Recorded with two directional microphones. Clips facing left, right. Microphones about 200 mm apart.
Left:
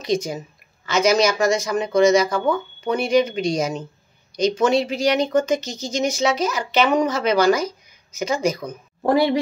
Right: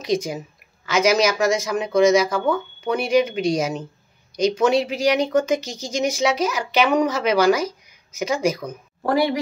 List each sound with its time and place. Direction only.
0.0 s speech: 10° right (ahead or behind)
9.0 s speech: 25° left (ahead or behind)